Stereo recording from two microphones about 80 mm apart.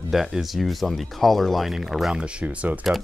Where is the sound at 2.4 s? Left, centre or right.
Centre.